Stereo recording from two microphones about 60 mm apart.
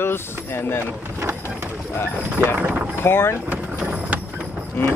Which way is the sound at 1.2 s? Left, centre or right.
Right.